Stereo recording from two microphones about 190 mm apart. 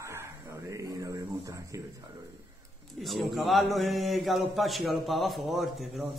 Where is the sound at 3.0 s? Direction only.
Centre (ahead or behind).